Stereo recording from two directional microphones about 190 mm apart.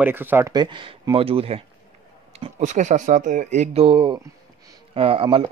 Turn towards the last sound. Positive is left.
turn(degrees=-30)  # may be behind; listen again after turning